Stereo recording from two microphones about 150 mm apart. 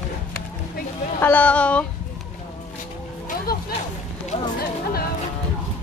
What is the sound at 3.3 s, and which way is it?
Music, 90° left.